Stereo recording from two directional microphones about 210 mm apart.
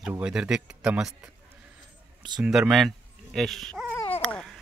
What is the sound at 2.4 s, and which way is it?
Speech, centre (ahead or behind).